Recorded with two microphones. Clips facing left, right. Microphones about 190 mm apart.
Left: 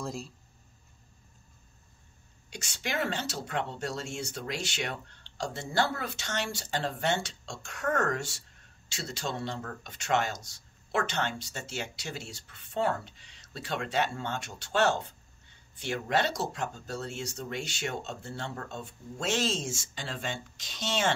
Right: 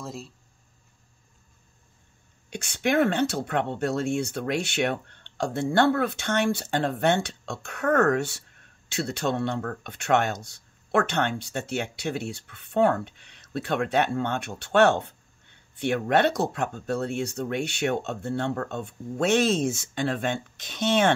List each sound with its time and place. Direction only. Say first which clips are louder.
0.0 s speech: even; centre (ahead or behind)
2.5 s speech: right 11 dB; 60° right (ahead or behind)